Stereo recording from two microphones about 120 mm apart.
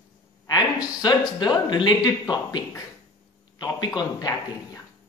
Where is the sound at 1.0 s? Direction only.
35° left (ahead or behind).